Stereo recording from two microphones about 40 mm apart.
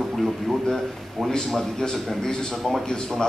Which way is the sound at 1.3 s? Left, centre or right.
Centre.